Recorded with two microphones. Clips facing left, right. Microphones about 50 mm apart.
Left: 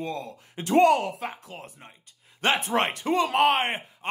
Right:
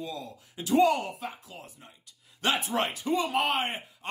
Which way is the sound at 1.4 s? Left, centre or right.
Left.